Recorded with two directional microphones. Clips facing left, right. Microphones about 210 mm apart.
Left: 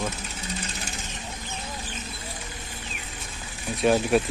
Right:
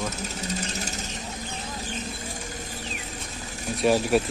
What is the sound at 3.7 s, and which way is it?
Speech, centre (ahead or behind).